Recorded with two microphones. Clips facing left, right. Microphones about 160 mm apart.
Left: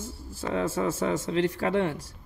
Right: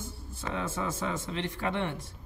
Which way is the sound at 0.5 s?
30° left (ahead or behind).